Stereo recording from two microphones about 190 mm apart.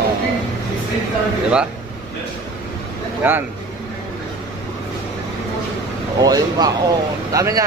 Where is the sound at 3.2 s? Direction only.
10° right (ahead or behind).